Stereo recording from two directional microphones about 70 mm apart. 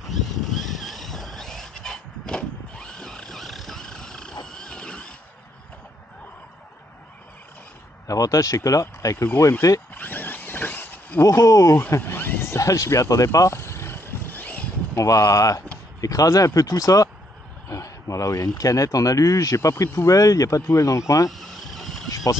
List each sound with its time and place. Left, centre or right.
0.5 s dog: centre
4.5 s wild animals: centre
8.1 s speech: left
9.9 s a sound: left
11.1 s speech: left
12.0 s speech: left
15.0 s speech: left
21.3 s a sound: centre